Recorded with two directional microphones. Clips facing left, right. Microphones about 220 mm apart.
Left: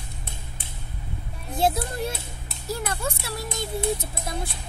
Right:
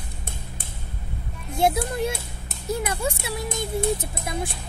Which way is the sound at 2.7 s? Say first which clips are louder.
Right 3 dB; 15° right (ahead or behind).